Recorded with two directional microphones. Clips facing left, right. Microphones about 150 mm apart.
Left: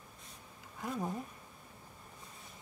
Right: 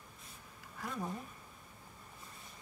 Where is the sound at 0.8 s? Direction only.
20° left (ahead or behind).